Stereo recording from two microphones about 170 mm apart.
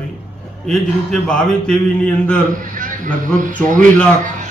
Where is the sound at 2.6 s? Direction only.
50° right (ahead or behind).